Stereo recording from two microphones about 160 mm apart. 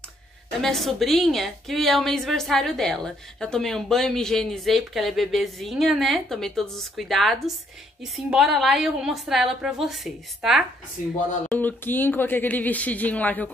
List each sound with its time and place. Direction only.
0.6 s a woman's voice: centre (ahead or behind)
11.0 s speech: 55° left (ahead or behind)
11.5 s speech: 10° left (ahead or behind)